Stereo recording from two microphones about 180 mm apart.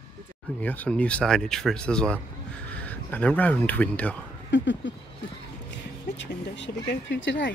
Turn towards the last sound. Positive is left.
turn(degrees=85)